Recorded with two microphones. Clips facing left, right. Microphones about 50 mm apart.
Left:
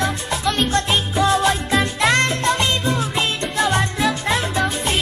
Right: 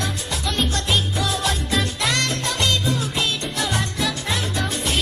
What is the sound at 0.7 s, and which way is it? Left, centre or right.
Music, left.